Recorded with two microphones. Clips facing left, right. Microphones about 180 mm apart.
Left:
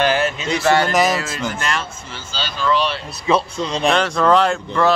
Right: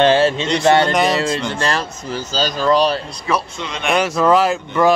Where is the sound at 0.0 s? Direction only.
25° right (ahead or behind).